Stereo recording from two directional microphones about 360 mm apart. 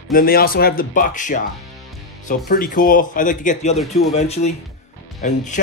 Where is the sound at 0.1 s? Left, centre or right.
Left.